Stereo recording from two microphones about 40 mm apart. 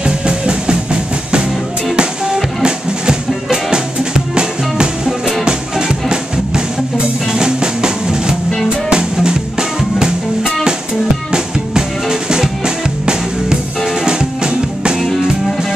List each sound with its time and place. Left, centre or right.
0.0 s music: right
2.0 s music: centre